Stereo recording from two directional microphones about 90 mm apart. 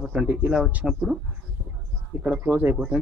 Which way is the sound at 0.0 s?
10° right (ahead or behind).